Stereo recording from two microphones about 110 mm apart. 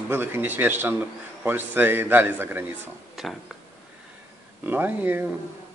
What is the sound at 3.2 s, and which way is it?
Speech, centre (ahead or behind).